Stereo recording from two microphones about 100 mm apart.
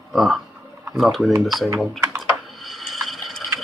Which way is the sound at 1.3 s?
35° right (ahead or behind).